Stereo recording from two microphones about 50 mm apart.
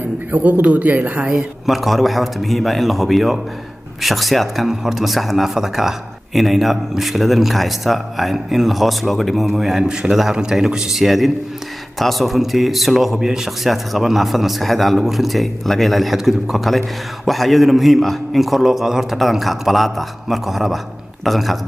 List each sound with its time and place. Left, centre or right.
0.3 s speech: right
1.3 s a man's voice: centre